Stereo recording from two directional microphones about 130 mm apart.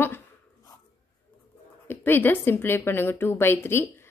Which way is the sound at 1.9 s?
15° left (ahead or behind).